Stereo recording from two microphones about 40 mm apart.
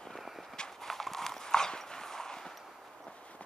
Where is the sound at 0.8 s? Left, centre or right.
Centre.